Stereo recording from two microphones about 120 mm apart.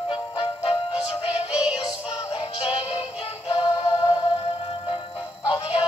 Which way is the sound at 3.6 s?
35° left (ahead or behind).